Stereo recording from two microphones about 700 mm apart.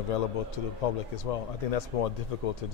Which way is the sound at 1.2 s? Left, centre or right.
Left.